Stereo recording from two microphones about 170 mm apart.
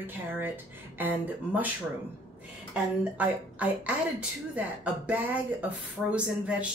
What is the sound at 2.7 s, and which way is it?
Speech, 10° right (ahead or behind).